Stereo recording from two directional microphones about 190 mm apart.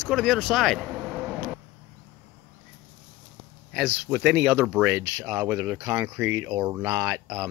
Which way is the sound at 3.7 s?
5° right (ahead or behind).